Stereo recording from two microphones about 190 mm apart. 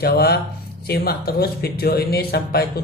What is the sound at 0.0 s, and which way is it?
Speech, 55° left (ahead or behind).